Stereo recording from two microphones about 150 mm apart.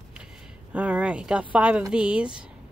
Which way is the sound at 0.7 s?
10° right (ahead or behind).